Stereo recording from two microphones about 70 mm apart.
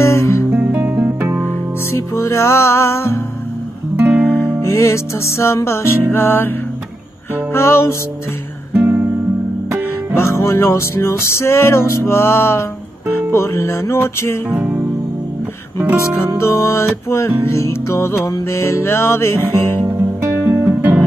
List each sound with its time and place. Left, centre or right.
0.0 s music: left
0.5 s music: right
1.9 s music: left
4.0 s music: right
4.6 s music: left
7.5 s music: left
8.7 s guitar: right
10.1 s music: left
14.5 s music: right
16.3 s music: left
19.9 s music: right
20.3 s music: right